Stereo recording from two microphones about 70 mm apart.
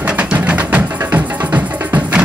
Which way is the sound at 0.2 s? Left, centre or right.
Centre.